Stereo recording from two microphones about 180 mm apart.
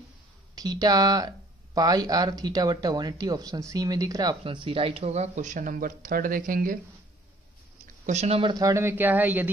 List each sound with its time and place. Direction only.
0.6 s speech: 20° right (ahead or behind); by 6.8 s 50° right (ahead or behind)
8.1 s speech: 35° right (ahead or behind); by 9.5 s 10° right (ahead or behind)